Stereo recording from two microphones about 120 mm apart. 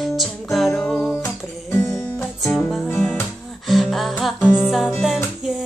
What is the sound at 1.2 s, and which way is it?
Music, 25° left (ahead or behind).